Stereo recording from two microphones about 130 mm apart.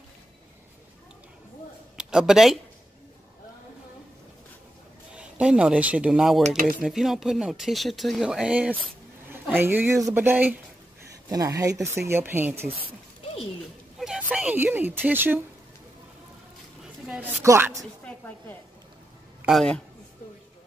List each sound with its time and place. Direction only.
2.0 s speech: 5° right (ahead or behind)
5.1 s speech: 5° right (ahead or behind)
6.4 s speech: 90° right
6.8 s speech: 5° right (ahead or behind)
11.2 s speech: 25° right (ahead or behind)
13.9 s a woman's voice: 5° right (ahead or behind)
17.2 s speech: 20° right (ahead or behind)
18.0 s speech: 15° left (ahead or behind)
19.4 s a man's voice: centre (ahead or behind)